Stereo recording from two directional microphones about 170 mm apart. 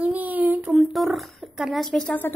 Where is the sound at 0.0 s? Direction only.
10° right (ahead or behind).